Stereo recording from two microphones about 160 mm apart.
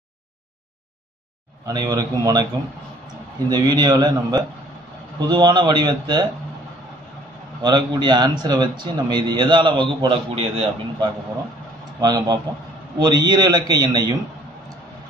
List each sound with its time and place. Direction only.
1.7 s a man's voice: 25° right (ahead or behind)
3.4 s a man's voice: 25° right (ahead or behind)
7.6 s a man's voice: 25° right (ahead or behind)